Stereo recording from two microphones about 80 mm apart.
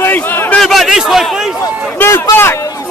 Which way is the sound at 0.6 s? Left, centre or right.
Centre.